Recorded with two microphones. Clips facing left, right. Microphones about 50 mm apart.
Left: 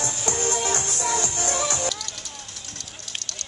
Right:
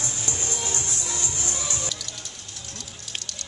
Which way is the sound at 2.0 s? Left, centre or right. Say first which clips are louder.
Left 2 dB; centre.